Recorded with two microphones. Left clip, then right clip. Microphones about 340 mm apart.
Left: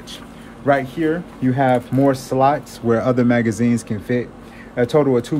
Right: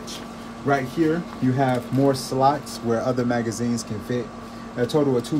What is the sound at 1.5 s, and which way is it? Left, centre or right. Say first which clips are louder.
Speech: left 6 dB; centre.